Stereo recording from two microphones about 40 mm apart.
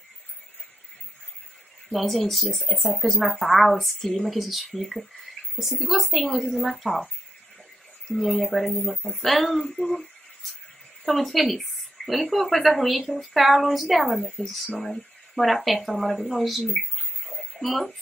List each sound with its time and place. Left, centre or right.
1.9 s a woman's voice: centre
8.1 s a woman's voice: centre